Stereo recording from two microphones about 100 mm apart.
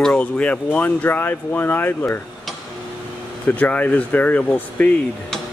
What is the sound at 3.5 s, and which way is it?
Speech, 15° left (ahead or behind).